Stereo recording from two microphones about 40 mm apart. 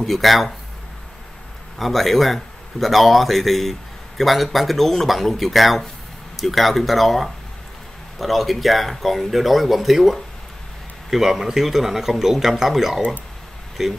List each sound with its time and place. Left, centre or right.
0.0 s speech: centre
1.8 s speech: centre